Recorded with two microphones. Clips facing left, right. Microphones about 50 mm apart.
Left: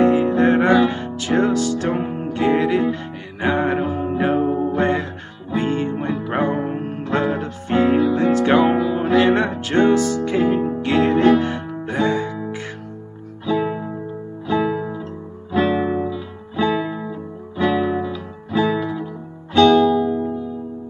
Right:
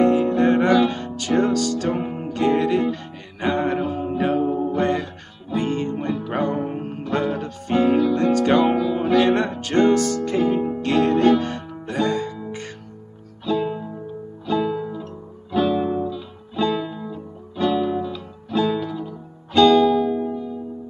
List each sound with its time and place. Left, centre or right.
0.0 s music: centre
8.6 s music: left
9.0 s music: centre
16.5 s music: centre